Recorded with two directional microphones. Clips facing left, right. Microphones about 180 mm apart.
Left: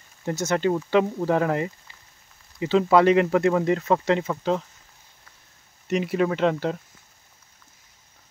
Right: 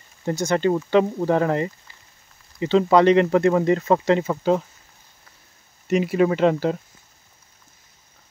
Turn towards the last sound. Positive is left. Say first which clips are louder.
# right 4 dB
turn(degrees=-5)  # may be behind; listen again after turning